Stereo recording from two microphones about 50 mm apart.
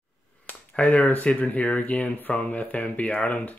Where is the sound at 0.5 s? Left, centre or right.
Left.